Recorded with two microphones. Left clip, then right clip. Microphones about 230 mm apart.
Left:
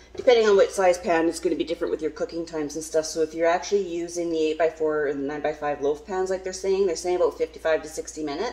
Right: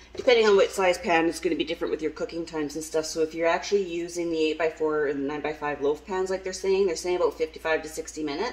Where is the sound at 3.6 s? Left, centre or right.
Right.